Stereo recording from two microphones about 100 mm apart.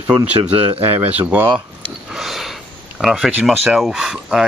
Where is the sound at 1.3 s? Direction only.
15° right (ahead or behind).